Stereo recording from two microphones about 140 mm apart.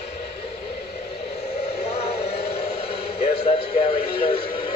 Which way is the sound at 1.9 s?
45° left (ahead or behind).